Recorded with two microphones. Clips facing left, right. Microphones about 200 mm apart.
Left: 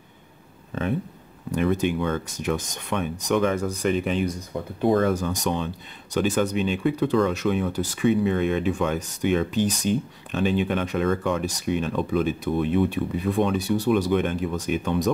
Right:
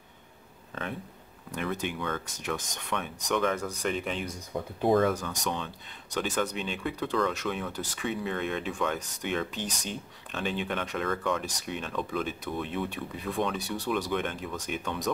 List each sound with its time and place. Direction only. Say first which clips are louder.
1.5 s speech: left 10 dB; 15° left (ahead or behind)
2.2 s speech: left 8 dB; 15° left (ahead or behind)
12.4 s speech: left 10 dB; 25° left (ahead or behind)
12.9 s speech: left 9 dB; 10° left (ahead or behind)